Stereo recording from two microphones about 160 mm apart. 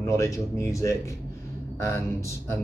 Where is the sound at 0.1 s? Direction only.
20° left (ahead or behind).